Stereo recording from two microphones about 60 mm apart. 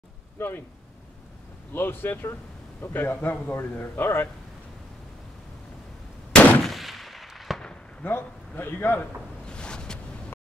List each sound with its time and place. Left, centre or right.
1.7 s a man's voice: left
6.3 s gunshot: left
6.6 s gunshot: centre
8.0 s a man's voice: left
9.5 s boat: centre